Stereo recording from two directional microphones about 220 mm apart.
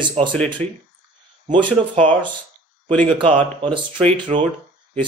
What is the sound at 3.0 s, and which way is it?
Speech, 25° right (ahead or behind).